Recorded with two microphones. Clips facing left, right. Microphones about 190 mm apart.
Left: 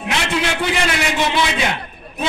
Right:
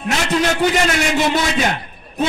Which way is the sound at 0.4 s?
40° right (ahead or behind).